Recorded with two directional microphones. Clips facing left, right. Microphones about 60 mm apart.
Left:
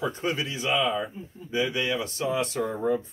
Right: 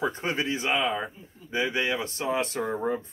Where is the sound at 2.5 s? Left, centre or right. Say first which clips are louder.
Even; centre.